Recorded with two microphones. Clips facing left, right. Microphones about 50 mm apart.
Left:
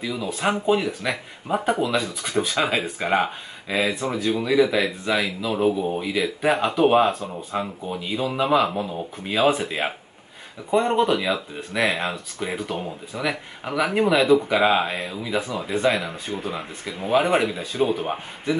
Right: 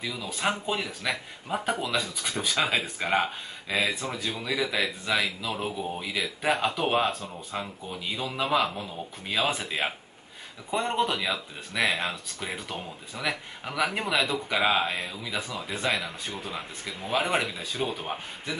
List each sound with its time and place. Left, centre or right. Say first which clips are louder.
0.0 s speech: left 5 dB; centre
8.6 s speech: left 7 dB; centre
9.2 s speech: left 8 dB; centre